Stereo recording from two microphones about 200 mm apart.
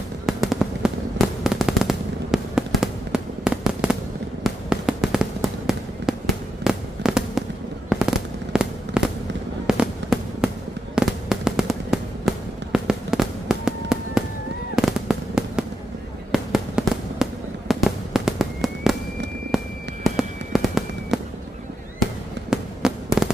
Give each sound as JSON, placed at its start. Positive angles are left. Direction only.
{"t": 0.3, "sound": "fireworks", "side_deg": 0}
{"t": 8.5, "sound": "fireworks", "side_deg": -5}
{"t": 22.5, "sound": "fireworks", "side_deg": -5}